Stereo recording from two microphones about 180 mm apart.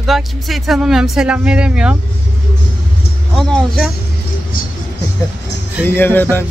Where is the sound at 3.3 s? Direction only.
Centre (ahead or behind).